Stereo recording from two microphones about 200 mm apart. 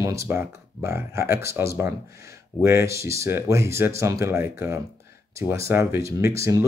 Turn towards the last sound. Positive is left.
turn(degrees=-15)  # may be behind; listen again after turning